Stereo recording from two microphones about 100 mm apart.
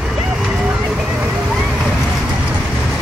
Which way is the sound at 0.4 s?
5° right (ahead or behind).